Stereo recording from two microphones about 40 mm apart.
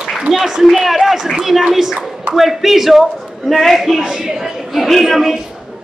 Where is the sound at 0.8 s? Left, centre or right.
Centre.